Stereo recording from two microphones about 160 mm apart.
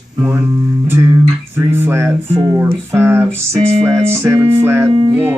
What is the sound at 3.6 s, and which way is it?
Music, 45° right (ahead or behind).